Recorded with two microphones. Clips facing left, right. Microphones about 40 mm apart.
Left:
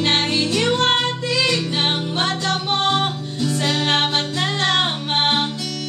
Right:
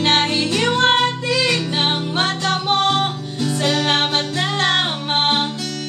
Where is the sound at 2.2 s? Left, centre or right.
Right.